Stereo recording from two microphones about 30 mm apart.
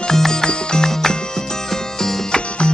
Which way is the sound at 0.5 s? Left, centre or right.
Left.